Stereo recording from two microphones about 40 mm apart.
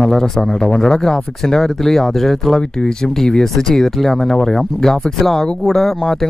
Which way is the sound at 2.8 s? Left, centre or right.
Centre.